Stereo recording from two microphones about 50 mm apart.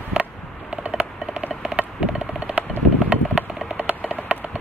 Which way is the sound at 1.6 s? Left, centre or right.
Right.